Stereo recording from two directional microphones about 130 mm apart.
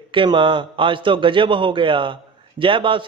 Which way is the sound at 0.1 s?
40° right (ahead or behind).